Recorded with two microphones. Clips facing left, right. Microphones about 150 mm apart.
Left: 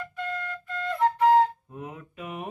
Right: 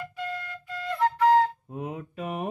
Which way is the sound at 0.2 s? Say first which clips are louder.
Left 3 dB; 5° right (ahead or behind).